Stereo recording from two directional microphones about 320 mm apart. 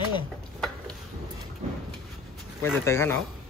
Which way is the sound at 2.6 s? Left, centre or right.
Centre.